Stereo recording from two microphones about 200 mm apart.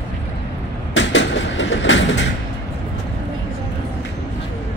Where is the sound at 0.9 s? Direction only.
65° left (ahead or behind).